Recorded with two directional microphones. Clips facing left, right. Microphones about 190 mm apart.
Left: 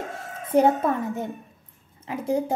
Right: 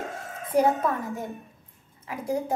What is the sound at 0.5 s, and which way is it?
Speech, 25° left (ahead or behind).